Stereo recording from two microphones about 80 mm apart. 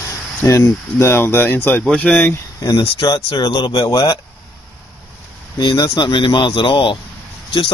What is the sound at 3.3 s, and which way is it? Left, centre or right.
Speech, left.